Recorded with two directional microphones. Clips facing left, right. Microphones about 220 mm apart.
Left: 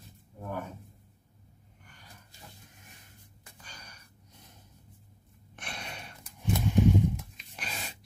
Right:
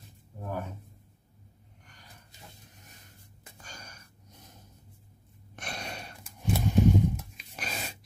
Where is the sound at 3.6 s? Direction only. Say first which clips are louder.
Right 4 dB; 45° right (ahead or behind).